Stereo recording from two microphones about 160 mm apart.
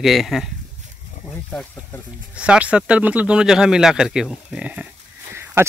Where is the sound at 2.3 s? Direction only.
5° right (ahead or behind).